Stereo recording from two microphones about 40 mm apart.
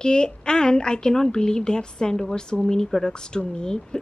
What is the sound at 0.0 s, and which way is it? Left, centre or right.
A woman's voice, left.